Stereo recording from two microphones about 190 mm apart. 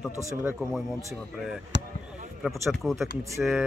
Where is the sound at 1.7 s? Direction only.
70° right (ahead or behind).